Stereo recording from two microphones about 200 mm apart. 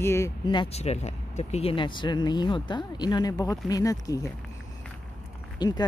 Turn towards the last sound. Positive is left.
turn(degrees=20)  # may be behind; listen again after turning